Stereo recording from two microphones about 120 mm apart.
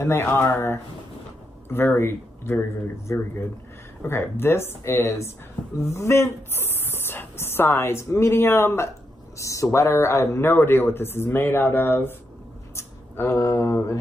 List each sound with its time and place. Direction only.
0.0 s speech: 20° left (ahead or behind)